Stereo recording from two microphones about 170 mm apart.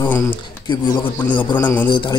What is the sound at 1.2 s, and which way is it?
Speech, 10° left (ahead or behind).